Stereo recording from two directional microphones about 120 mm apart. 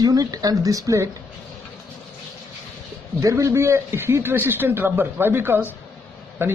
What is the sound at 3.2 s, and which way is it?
Speech, 25° right (ahead or behind).